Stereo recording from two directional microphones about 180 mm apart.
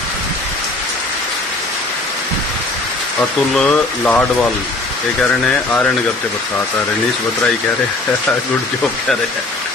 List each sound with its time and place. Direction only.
3.5 s speech: 5° left (ahead or behind)
5.3 s speech: 10° left (ahead or behind)